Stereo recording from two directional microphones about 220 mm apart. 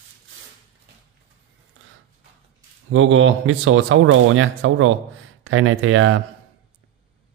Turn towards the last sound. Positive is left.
turn(degrees=-65)  # may be behind; listen again after turning